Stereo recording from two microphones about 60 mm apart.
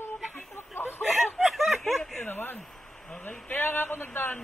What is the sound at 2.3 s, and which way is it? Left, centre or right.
Speech, left.